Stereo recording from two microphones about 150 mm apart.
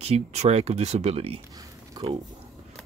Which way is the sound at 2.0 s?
30° right (ahead or behind).